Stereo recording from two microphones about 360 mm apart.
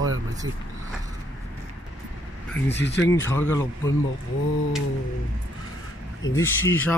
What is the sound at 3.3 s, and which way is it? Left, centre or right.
Speech, centre.